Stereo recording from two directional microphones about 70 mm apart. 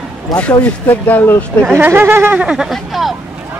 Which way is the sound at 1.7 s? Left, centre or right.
Right.